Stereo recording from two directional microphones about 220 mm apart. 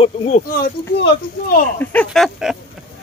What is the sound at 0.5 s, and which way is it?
Speech, 40° left (ahead or behind).